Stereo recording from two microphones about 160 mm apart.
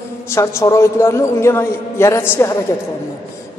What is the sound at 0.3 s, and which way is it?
A man's voice, 20° left (ahead or behind).